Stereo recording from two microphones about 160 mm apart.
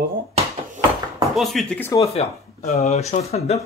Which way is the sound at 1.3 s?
Centre (ahead or behind).